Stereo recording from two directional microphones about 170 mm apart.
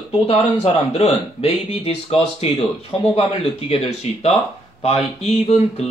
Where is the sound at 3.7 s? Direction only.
35° left (ahead or behind).